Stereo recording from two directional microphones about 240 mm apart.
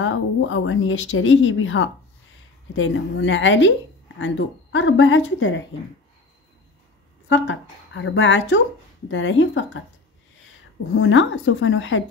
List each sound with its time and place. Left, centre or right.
0.0 s speech: left
7.2 s speech: left
11.0 s speech: left